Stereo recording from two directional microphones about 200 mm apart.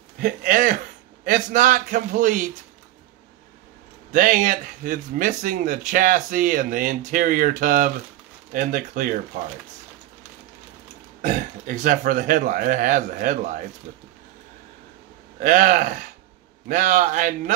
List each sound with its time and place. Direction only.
0.2 s a man's voice: 40° right (ahead or behind)
4.1 s speech: 40° right (ahead or behind)
11.1 s speech: 40° right (ahead or behind)
15.3 s speech: 40° right (ahead or behind)